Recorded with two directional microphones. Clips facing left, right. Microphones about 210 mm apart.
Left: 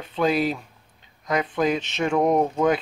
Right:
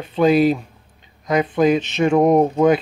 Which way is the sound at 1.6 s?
5° right (ahead or behind).